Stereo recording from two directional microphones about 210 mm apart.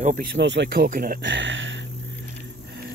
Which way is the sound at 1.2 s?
60° right (ahead or behind).